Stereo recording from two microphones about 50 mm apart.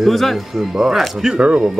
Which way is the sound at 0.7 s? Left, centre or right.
Centre.